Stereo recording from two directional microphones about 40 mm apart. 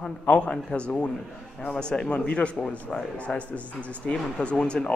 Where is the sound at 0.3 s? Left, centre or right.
Left.